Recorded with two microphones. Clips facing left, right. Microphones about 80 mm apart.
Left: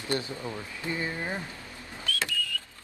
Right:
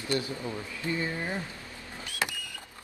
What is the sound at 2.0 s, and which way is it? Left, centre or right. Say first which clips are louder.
Power windows: left 2 dB; centre.